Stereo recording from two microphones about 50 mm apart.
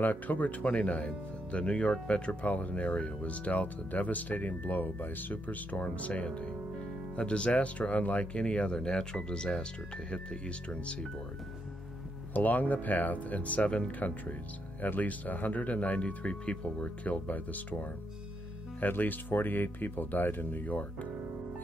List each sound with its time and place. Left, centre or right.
0.0 s speech: left
12.4 s speech: left